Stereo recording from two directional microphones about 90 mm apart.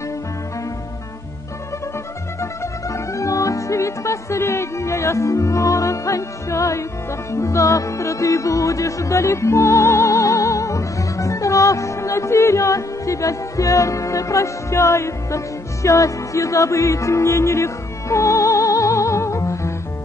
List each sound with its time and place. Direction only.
2.4 s music: 35° left (ahead or behind)